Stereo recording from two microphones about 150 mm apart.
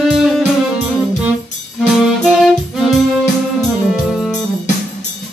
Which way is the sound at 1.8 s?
Centre (ahead or behind).